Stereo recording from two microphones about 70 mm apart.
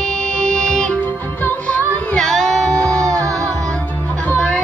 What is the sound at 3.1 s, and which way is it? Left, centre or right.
Music, right.